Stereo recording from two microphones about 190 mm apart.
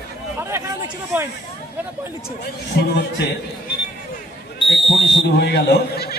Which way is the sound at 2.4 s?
60° left (ahead or behind).